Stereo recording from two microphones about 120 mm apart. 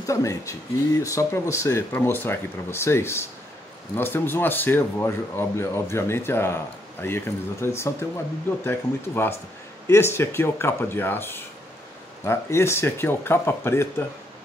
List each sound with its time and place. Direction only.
0.0 s speech: 25° left (ahead or behind)